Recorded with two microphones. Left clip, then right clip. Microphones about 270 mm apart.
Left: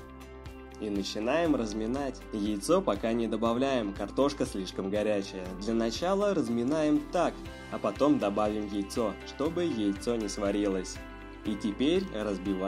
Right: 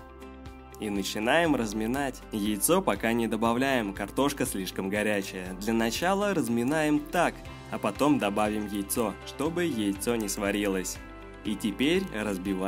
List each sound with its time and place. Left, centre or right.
0.8 s speech: right
1.5 s speech: right
1.8 s speech: right